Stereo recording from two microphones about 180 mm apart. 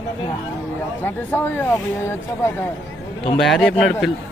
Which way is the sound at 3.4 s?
Centre (ahead or behind).